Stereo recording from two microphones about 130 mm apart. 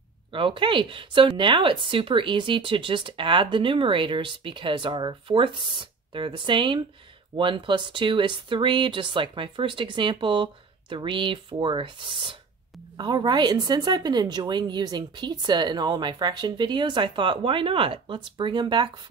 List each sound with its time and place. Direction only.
0.3 s speech: 40° right (ahead or behind)